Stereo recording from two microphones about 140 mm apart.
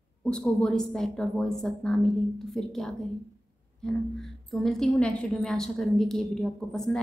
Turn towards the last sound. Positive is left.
turn(degrees=5)  # may be behind; listen again after turning